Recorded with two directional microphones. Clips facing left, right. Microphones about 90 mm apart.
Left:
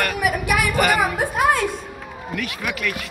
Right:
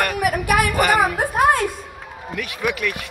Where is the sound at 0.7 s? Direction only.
20° right (ahead or behind).